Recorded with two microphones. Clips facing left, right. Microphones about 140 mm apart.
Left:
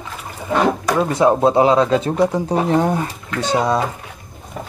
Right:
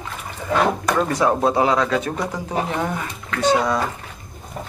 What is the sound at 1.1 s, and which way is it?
Speech, 25° left (ahead or behind).